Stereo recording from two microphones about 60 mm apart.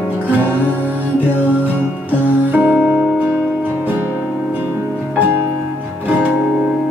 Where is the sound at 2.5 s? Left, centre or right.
Right.